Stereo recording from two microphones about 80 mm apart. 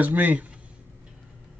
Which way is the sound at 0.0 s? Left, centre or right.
Right.